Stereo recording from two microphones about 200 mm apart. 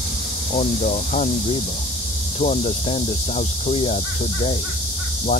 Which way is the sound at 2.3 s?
35° left (ahead or behind).